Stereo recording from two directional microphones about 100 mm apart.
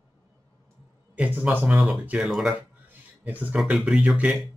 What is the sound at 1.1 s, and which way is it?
Speech, 15° right (ahead or behind).